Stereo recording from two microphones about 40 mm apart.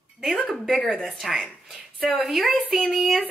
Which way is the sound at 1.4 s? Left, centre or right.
Centre.